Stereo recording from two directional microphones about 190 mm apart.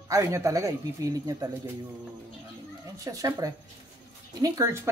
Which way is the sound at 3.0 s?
20° right (ahead or behind).